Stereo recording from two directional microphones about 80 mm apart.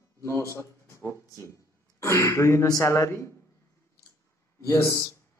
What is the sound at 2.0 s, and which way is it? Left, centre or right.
A man's voice, left.